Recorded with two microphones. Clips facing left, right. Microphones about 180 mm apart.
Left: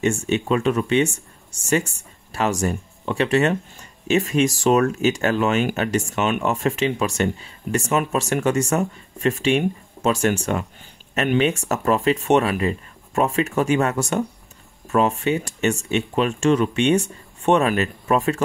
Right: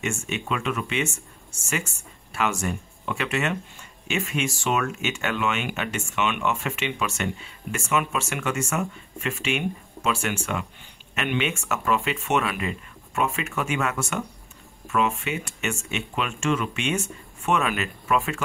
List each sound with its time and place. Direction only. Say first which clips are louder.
0.0 s speech: left 9 dB; 35° left (ahead or behind)